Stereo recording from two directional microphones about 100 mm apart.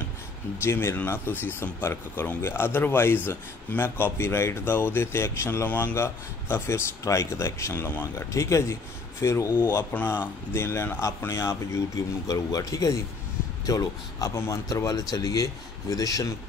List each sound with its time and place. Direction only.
0.7 s speech: 20° left (ahead or behind); by 14.3 s 40° left (ahead or behind)
14.3 s speech: 30° left (ahead or behind)